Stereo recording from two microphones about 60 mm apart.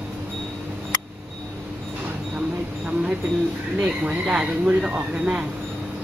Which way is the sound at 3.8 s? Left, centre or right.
Right.